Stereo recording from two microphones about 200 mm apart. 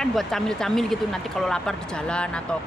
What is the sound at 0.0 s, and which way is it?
Speech, centre (ahead or behind).